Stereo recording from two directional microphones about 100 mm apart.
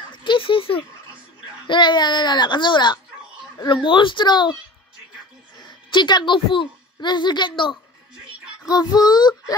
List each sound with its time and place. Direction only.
0.1 s a sound: 55° left (ahead or behind)
1.7 s speech: 50° left (ahead or behind)
5.6 s a woman's voice: 50° left (ahead or behind)
8.6 s a child's voice: 40° left (ahead or behind)